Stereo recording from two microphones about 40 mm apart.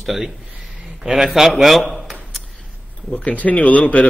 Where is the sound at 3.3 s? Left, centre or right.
Left.